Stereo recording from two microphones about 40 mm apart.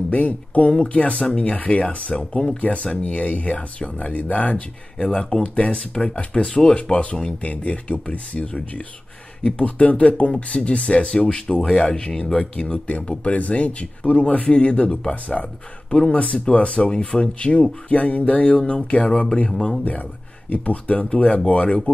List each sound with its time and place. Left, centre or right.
0.1 s speech: left
0.7 s speech: left
1.1 s speech: centre
1.4 s speech: left
4.9 s speech: left
9.8 s speech: left
12.7 s speech: left
19.8 s speech: left